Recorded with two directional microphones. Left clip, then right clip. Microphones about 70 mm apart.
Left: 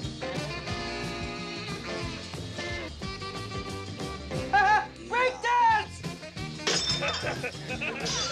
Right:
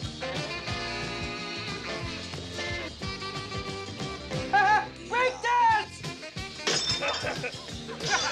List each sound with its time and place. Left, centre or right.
0.2 s music: left
0.7 s music: left
3.5 s music: left
4.5 s music: centre